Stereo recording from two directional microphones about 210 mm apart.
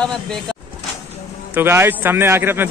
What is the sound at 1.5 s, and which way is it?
A man's voice, 10° right (ahead or behind).